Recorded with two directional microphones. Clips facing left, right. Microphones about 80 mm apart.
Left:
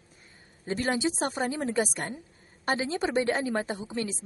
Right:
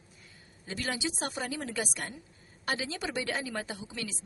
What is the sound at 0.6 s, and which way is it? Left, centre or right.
A woman's voice, left.